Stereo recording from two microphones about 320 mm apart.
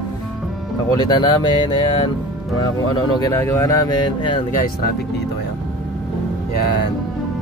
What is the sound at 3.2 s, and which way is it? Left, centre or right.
Speech, centre.